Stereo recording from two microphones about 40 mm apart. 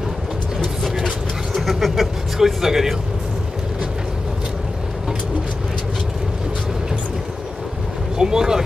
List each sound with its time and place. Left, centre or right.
1.0 s vehicle: centre
8.2 s speech: centre